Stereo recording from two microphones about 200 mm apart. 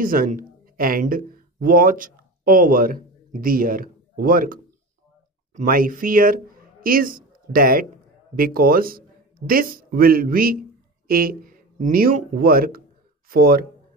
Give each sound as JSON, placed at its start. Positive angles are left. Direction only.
{"t": 0.0, "sound": "speech", "side_deg": -45}